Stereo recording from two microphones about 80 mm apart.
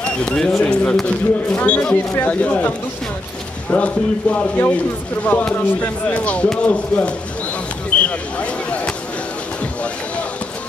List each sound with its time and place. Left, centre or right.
0.0 s speech: centre
3.7 s speech: centre
8.0 s a sound: centre